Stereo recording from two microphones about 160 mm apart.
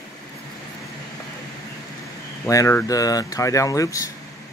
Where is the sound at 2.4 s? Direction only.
20° left (ahead or behind).